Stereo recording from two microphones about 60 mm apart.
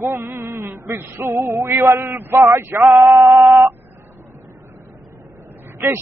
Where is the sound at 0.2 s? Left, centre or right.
Right.